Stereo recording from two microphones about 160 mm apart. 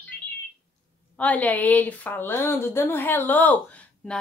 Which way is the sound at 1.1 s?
10° left (ahead or behind).